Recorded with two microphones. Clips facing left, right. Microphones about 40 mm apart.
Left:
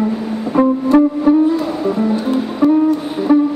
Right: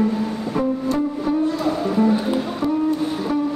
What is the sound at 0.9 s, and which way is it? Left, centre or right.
Music, left.